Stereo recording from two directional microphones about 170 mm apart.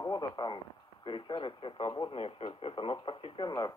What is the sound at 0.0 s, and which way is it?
Speech, 25° left (ahead or behind).